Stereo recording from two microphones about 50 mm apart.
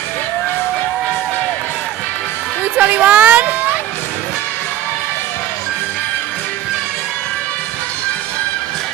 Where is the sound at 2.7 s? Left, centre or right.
Right.